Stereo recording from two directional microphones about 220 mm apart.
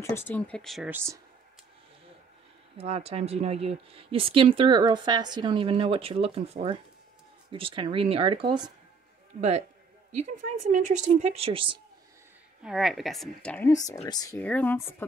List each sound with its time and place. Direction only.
0.3 s speech: 5° left (ahead or behind); by 1.2 s 10° right (ahead or behind)
2.8 s speech: 25° right (ahead or behind)
10.6 s speech: 35° right (ahead or behind)
12.6 s speech: centre (ahead or behind)